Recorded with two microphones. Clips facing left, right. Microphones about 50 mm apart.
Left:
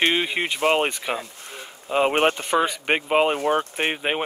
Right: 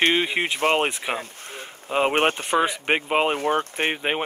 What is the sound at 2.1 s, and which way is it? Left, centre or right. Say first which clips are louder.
Speech: left 1 dB; right.